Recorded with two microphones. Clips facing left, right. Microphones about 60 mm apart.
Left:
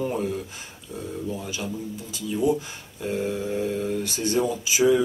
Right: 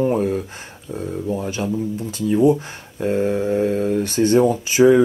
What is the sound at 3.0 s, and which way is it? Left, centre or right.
Speech, right.